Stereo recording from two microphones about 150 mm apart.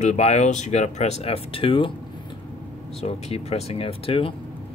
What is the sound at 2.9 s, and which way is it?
Speech, 40° left (ahead or behind).